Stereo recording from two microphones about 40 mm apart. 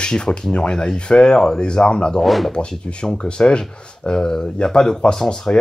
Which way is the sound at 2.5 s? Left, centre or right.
Left.